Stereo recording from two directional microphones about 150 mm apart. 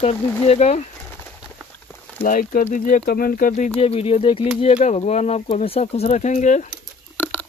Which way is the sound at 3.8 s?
45° left (ahead or behind).